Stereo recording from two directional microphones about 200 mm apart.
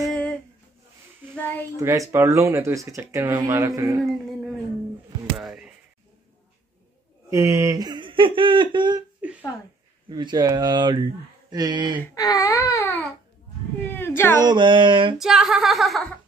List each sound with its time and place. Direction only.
0.0 s a sound: 5° left (ahead or behind)
1.8 s speech: 15° right (ahead or behind)
5.4 s a sound: centre (ahead or behind)
7.2 s speech: 15° right (ahead or behind)
10.0 s speech: 20° right (ahead or behind)
12.1 s babbling: 20° left (ahead or behind)
13.9 s cat: 10° left (ahead or behind)
14.4 s speech: 20° right (ahead or behind)
15.1 s a sound: centre (ahead or behind)